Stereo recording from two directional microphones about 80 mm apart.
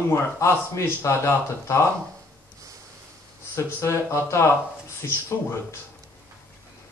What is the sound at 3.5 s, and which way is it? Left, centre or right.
A man's voice, left.